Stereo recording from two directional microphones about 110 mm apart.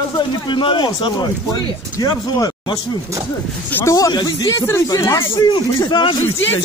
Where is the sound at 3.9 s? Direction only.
35° left (ahead or behind).